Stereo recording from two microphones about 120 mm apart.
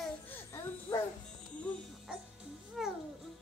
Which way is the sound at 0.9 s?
20° left (ahead or behind).